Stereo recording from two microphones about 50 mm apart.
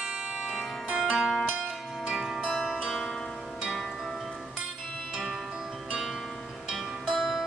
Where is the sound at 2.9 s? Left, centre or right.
Centre.